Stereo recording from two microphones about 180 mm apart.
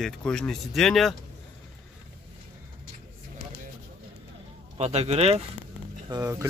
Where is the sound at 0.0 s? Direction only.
5° left (ahead or behind).